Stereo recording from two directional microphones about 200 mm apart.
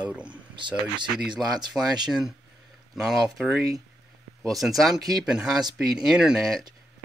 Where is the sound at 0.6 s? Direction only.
25° right (ahead or behind).